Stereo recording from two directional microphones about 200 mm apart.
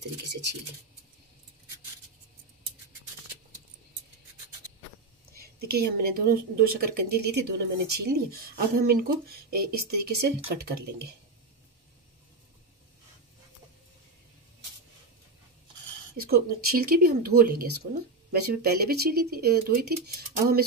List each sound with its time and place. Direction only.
5.6 s a woman's voice: 50° right (ahead or behind)
16.2 s a woman's voice: 50° right (ahead or behind)